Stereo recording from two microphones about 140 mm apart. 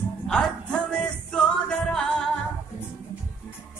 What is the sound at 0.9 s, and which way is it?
Music, 5° left (ahead or behind).